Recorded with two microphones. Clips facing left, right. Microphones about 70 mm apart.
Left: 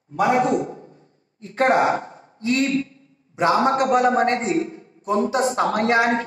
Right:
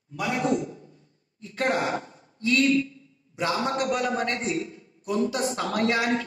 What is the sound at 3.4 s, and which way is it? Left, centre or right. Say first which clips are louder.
A man's voice: left 8 dB; left.